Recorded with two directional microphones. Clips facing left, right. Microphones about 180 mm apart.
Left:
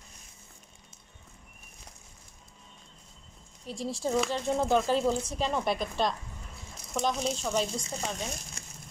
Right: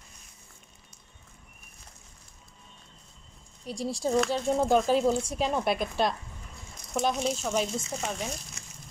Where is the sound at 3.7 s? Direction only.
10° right (ahead or behind).